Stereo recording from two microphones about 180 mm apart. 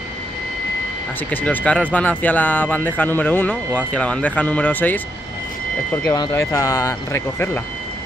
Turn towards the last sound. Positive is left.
turn(degrees=15)  # may be behind; listen again after turning